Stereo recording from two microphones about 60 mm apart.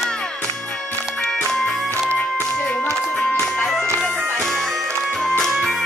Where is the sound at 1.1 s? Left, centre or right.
Centre.